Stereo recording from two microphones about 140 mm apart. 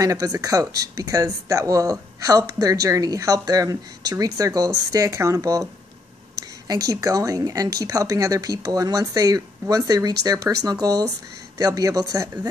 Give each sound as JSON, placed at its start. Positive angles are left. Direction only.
{"t": 0.0, "sound": "speech", "side_deg": -25}
{"t": 6.7, "sound": "speech", "side_deg": -25}